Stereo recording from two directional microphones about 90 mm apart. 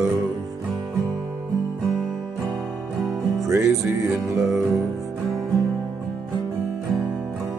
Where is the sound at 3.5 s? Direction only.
30° right (ahead or behind).